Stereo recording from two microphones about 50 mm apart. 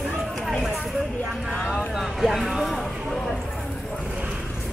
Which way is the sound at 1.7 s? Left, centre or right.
Centre.